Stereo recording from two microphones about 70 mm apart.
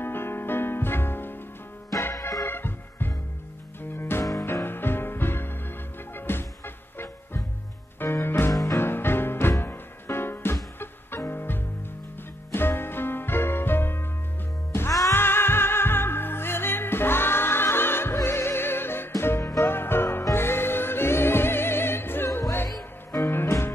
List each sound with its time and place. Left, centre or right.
0.0 s music: left
2.1 s music: left
2.4 s music: left
8.5 s music: left
8.7 s music: left
15.1 s music: left